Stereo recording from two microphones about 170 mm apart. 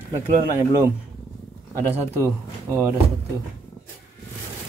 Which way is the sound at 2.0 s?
15° right (ahead or behind).